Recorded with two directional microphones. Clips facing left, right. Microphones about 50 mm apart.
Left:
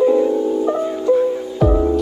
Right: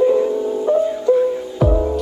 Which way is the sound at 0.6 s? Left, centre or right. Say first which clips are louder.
Right 2 dB; left.